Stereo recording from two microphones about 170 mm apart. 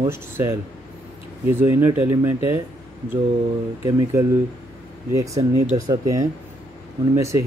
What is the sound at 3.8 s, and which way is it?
Speech, 15° right (ahead or behind).